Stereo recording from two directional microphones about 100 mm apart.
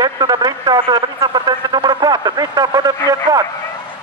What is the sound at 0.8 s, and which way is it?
Radio, 45° right (ahead or behind).